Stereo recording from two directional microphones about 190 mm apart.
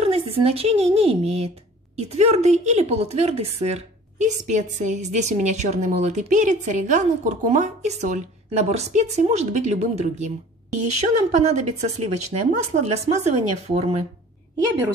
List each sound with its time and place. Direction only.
0.0 s a woman's voice: 30° right (ahead or behind)
11.5 s a woman's voice: 35° right (ahead or behind)